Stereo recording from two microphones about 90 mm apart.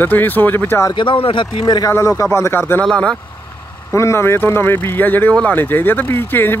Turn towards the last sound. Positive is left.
turn(degrees=25)  # may be behind; listen again after turning